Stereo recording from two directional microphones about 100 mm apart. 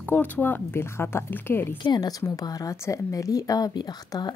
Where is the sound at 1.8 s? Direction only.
45° left (ahead or behind).